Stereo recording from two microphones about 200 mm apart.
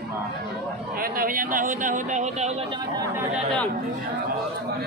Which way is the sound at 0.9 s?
45° right (ahead or behind).